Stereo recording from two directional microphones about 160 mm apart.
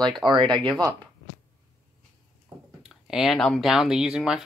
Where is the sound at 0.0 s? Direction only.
30° right (ahead or behind).